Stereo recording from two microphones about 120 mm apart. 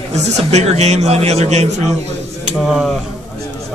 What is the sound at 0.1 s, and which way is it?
A man's voice, 70° right (ahead or behind).